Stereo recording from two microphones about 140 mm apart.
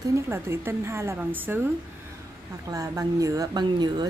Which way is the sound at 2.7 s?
25° right (ahead or behind).